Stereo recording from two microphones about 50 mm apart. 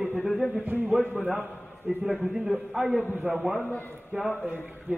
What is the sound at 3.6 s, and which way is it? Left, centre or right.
Speech, left.